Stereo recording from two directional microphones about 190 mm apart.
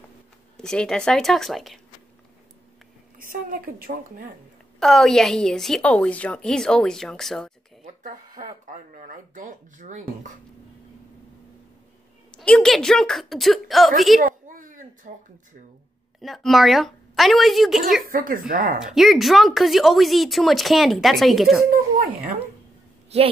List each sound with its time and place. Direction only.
0.6 s a woman's voice: 5° left (ahead or behind)
3.3 s speech: 45° right (ahead or behind)
4.7 s a woman's voice: centre (ahead or behind)
7.8 s speech: 40° right (ahead or behind)
12.3 s a woman's voice: 5° left (ahead or behind)
14.2 s a sound: 45° right (ahead or behind)
16.2 s a woman's voice: centre (ahead or behind)
18.1 s speech: 50° right (ahead or behind)
18.8 s a woman's voice: centre (ahead or behind)
21.6 s speech: 50° right (ahead or behind)
23.1 s a woman's voice: 35° right (ahead or behind)